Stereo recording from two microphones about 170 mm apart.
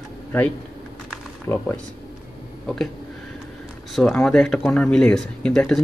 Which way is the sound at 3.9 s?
5° left (ahead or behind).